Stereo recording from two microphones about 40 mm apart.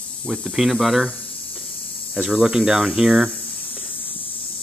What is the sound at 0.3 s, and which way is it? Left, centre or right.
Speech, centre.